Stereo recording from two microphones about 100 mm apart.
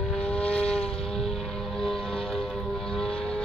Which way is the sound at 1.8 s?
5° left (ahead or behind).